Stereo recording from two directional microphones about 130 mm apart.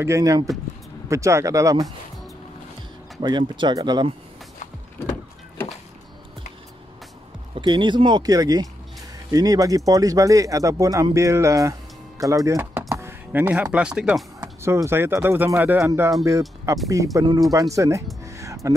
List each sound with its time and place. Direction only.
0.0 s speech: 25° right (ahead or behind)
3.2 s speech: 35° right (ahead or behind)
7.5 s speech: 35° right (ahead or behind); by 14.2 s 5° right (ahead or behind)
14.4 s speech: 25° right (ahead or behind)
18.2 s music: 25° right (ahead or behind)